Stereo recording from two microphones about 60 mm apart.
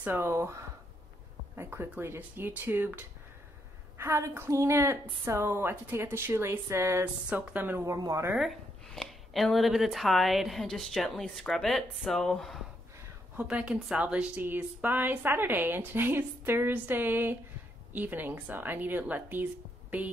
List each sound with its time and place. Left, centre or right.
0.2 s speech: right
1.6 s a woman's voice: right
4.0 s speech: right
7.3 s a woman's voice: right
7.8 s speech: right
8.4 s a sound: centre
9.3 s a woman's voice: centre
13.4 s speech: centre
14.4 s a woman's voice: right